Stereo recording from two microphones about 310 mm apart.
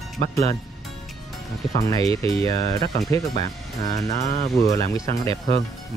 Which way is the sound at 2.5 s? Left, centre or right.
Centre.